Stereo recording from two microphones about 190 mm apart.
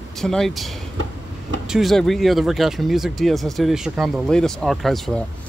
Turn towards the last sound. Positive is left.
turn(degrees=0)  # may be behind; listen again after turning